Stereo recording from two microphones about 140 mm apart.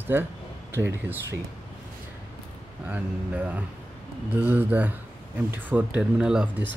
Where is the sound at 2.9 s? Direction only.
10° right (ahead or behind).